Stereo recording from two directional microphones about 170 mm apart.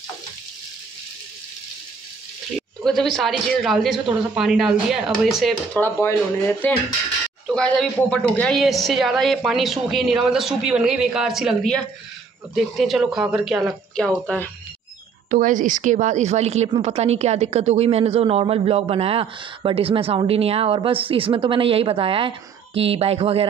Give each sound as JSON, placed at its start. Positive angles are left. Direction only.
{"t": 2.8, "sound": "a woman's voice", "side_deg": 0}
{"t": 5.8, "sound": "a woman's voice", "side_deg": 15}
{"t": 15.2, "sound": "a woman's voice", "side_deg": -50}